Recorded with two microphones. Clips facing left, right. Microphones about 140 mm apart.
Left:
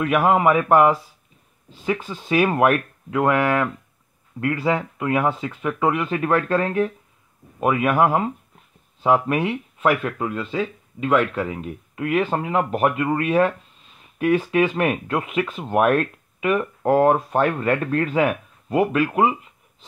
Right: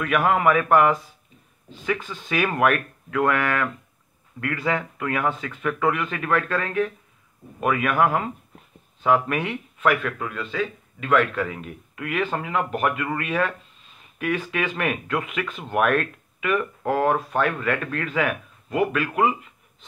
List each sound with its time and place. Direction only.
0.0 s speech: 25° left (ahead or behind)
2.0 s speech: 30° left (ahead or behind)